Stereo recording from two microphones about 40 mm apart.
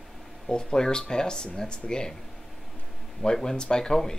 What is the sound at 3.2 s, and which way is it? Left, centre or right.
Speech, centre.